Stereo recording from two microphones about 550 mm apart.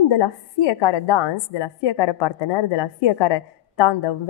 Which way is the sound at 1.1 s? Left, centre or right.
Left.